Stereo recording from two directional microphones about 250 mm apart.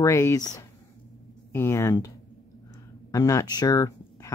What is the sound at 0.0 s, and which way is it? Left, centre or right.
Speech, centre.